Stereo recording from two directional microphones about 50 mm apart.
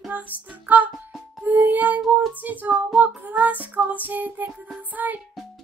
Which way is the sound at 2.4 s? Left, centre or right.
Right.